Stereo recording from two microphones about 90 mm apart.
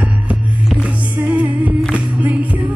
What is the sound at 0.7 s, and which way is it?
Music, 15° right (ahead or behind).